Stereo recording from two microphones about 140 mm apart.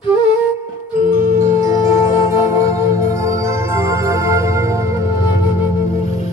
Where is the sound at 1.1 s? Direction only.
20° right (ahead or behind).